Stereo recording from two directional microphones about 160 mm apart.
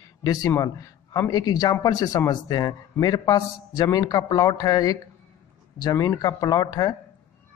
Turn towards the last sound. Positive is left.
turn(degrees=25)  # may be behind; listen again after turning